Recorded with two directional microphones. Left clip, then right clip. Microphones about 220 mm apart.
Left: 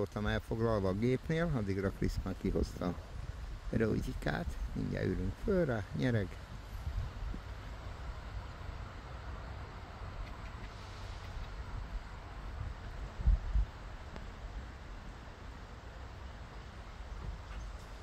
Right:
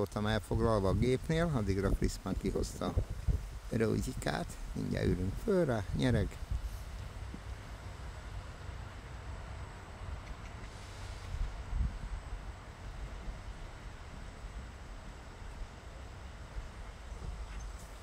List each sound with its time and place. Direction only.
0.0 s speech: 20° right (ahead or behind)